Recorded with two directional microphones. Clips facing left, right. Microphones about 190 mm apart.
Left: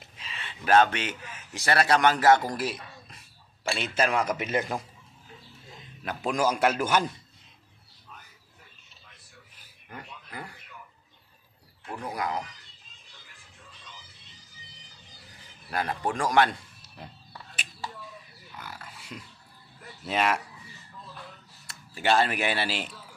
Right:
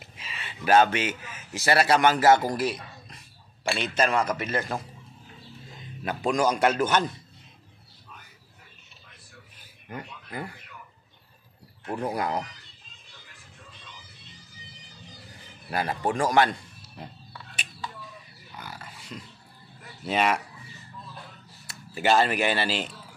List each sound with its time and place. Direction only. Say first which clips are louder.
0.0 s a man's voice: right 1 dB; 5° right (ahead or behind); by 4.8 s 15° left (ahead or behind)
6.0 s a man's voice: right 2 dB; 5° left (ahead or behind)
9.8 s speech: right 5 dB; 20° right (ahead or behind)
12.0 s speech: right 3 dB; 30° right (ahead or behind)
15.7 s a man's voice: right 2 dB; 5° right (ahead or behind)
18.6 s pig: right 2 dB; centre (ahead or behind)
20.1 s a man's voice: right 2 dB; centre (ahead or behind)
21.6 s speech: right 2 dB; 5° right (ahead or behind)